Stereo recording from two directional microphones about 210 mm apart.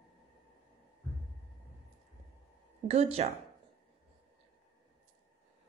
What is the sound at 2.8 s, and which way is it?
Speech, 30° right (ahead or behind).